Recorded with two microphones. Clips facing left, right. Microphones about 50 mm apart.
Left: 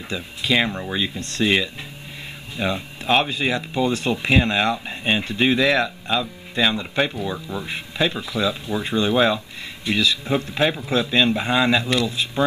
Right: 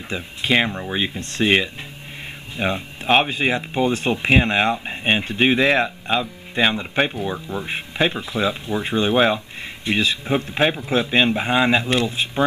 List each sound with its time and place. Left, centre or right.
0.1 s speech: right
0.7 s speech: centre
0.9 s speech: right